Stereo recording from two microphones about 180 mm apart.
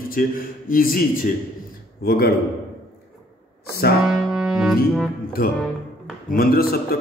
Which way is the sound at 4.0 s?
5° right (ahead or behind).